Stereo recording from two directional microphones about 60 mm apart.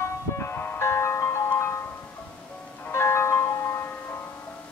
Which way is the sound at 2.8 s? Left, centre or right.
Left.